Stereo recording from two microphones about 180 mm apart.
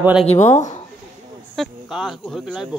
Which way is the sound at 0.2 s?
40° left (ahead or behind).